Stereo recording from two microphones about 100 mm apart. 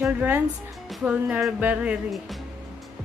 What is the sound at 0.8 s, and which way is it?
Speech, 5° right (ahead or behind).